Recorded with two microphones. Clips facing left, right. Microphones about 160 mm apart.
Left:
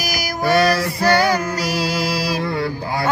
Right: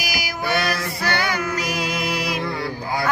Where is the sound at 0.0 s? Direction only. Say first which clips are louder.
Left 5 dB; 45° left (ahead or behind).